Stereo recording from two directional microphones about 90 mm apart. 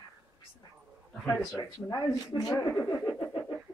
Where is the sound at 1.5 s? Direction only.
50° left (ahead or behind).